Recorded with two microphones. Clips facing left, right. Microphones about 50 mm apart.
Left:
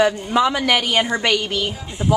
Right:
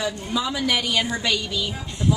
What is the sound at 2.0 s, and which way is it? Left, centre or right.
Speech, left.